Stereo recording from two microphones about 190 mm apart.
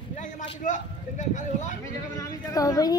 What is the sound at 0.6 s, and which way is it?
Speech, 40° left (ahead or behind).